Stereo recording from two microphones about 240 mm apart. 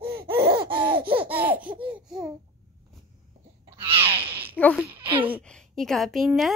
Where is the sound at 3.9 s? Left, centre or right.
Right.